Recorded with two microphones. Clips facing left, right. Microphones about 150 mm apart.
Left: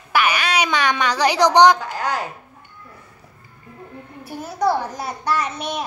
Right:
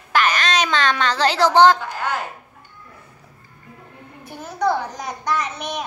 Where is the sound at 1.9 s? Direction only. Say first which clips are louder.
Left 1 dB; 40° left (ahead or behind).